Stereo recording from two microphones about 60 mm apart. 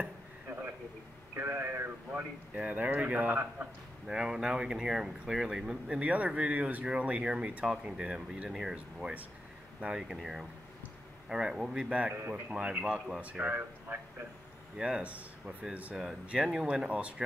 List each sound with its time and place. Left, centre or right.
0.0 s a sound: right
1.3 s speech: right
2.0 s speech: right
4.1 s speech: centre; by 10.0 s right
10.1 s speech: centre; by 12.5 s right
12.8 s a man's voice: centre; by 14.0 s right
14.8 s speech: centre